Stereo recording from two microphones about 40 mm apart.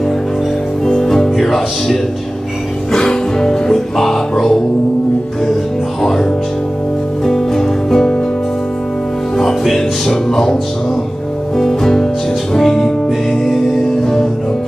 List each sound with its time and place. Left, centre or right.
0.8 s music: centre
1.3 s speech: centre
2.9 s music: centre
7.2 s music: centre
9.4 s music: centre